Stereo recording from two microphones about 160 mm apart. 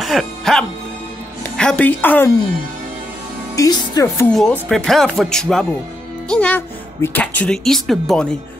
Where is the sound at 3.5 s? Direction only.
25° left (ahead or behind).